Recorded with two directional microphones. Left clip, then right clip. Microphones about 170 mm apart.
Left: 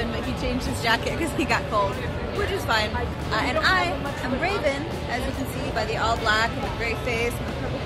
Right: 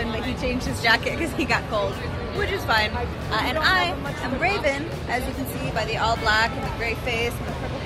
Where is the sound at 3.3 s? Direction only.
Centre (ahead or behind).